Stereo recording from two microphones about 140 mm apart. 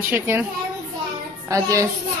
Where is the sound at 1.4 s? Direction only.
20° right (ahead or behind).